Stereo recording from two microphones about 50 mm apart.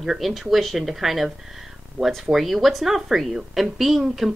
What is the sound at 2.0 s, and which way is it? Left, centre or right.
Speech, right.